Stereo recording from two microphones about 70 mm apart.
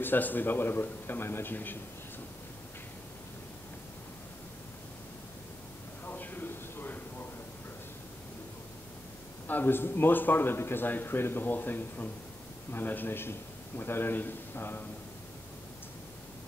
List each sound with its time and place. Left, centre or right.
0.0 s a man's voice: left
6.0 s a sound: left
9.5 s a man's voice: left